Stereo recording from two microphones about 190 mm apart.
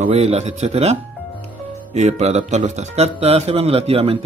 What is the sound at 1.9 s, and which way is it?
Speech, 35° right (ahead or behind).